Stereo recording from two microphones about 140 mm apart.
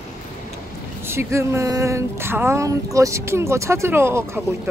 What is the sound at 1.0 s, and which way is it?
Speech, 15° right (ahead or behind).